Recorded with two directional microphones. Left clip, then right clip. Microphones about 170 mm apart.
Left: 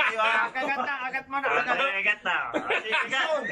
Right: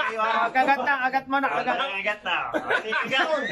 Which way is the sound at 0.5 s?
90° right.